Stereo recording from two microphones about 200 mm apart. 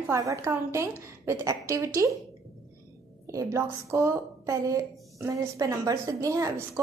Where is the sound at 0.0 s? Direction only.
15° right (ahead or behind).